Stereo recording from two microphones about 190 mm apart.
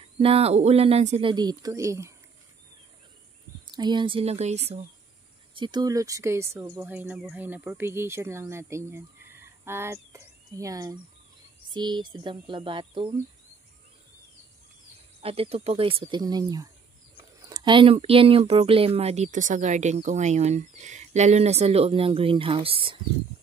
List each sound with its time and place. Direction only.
0.2 s speech: 30° right (ahead or behind)
1.3 s speech: 20° right (ahead or behind)
3.7 s speech: 25° right (ahead or behind)
5.5 s speech: 25° right (ahead or behind)
9.3 s a sound: 10° right (ahead or behind)
11.7 s speech: 25° right (ahead or behind)
15.2 s speech: 30° right (ahead or behind)